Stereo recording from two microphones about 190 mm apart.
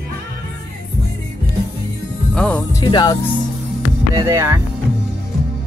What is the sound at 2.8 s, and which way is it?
Speech, 25° left (ahead or behind).